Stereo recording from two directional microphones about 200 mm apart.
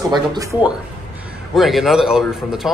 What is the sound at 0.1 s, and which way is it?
Speech, 20° right (ahead or behind).